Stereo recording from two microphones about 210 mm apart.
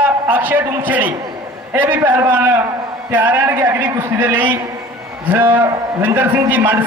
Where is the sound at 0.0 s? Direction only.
10° right (ahead or behind).